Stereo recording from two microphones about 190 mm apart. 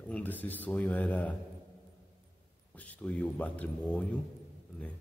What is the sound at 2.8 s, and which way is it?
Speech, 5° left (ahead or behind).